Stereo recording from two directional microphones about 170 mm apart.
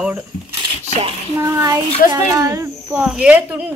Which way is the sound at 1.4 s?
20° right (ahead or behind).